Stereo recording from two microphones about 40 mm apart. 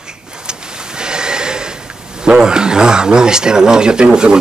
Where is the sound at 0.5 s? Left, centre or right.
Centre.